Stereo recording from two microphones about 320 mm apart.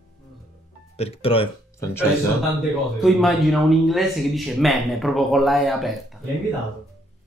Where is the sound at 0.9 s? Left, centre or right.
Centre.